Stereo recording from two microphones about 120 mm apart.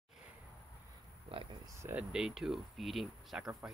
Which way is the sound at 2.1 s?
5° right (ahead or behind).